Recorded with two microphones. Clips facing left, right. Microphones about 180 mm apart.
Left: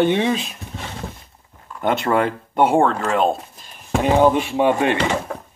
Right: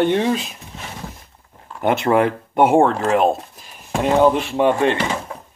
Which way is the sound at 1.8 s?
10° right (ahead or behind).